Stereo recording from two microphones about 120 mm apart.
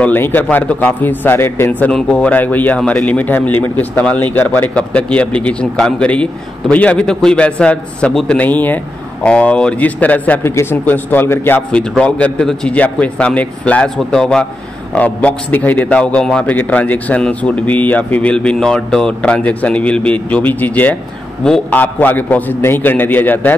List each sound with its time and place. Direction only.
0.0 s a man's voice: 15° left (ahead or behind)